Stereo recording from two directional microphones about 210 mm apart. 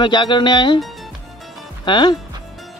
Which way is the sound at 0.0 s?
20° left (ahead or behind).